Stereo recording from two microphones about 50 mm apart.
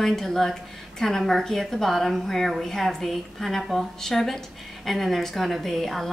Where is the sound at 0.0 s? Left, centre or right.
Centre.